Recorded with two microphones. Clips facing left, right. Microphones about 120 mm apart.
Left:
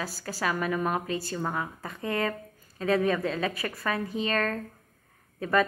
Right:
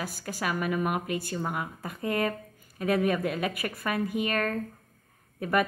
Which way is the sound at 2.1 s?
20° right (ahead or behind).